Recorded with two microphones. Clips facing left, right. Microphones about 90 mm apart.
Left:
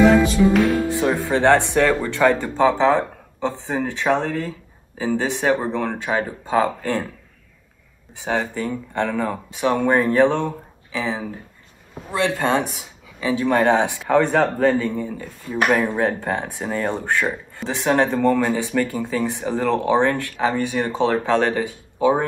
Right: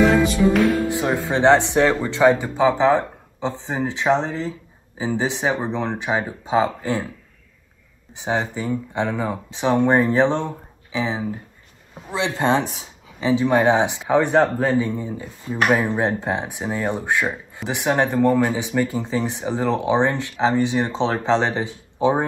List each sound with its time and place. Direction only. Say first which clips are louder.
0.0 s music: left 2 dB; centre (ahead or behind)
0.9 s speech: left 1 dB; 15° right (ahead or behind)
8.2 s speech: even; 15° right (ahead or behind)